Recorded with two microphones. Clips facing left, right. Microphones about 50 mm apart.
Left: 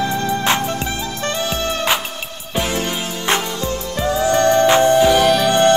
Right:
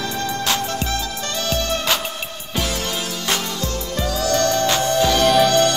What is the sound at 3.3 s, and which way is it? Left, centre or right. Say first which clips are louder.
Music: left 5 dB; left.